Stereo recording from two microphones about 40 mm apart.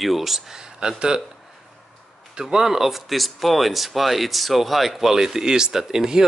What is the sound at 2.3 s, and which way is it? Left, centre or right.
Speech, centre.